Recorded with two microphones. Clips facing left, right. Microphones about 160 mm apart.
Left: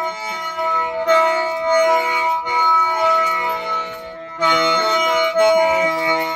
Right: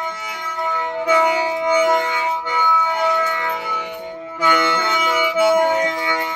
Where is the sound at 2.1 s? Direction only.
15° left (ahead or behind).